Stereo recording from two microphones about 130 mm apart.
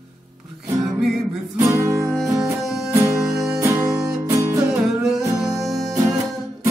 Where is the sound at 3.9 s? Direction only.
5° right (ahead or behind).